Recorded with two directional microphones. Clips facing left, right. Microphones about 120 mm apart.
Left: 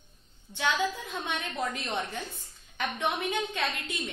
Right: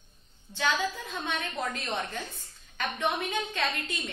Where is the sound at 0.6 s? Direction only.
15° left (ahead or behind).